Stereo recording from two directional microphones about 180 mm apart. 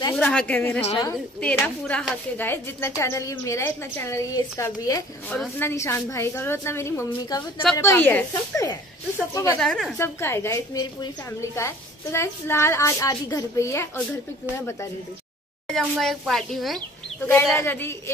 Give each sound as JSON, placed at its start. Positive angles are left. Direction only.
{"t": 0.2, "sound": "a woman's voice", "side_deg": 5}
{"t": 9.6, "sound": "speech", "side_deg": 0}
{"t": 9.9, "sound": "a woman's voice", "side_deg": 15}
{"t": 15.7, "sound": "speech", "side_deg": 0}
{"t": 17.3, "sound": "a woman's voice", "side_deg": 10}